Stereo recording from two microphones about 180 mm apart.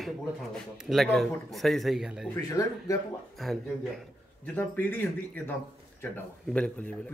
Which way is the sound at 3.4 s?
Centre (ahead or behind).